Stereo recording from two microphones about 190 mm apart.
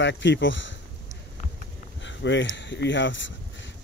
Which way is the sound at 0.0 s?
70° left (ahead or behind).